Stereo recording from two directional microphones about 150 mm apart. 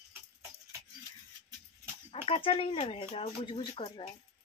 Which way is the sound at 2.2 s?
40° left (ahead or behind).